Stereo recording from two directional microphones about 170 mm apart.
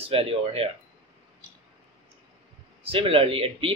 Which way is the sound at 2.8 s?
35° right (ahead or behind).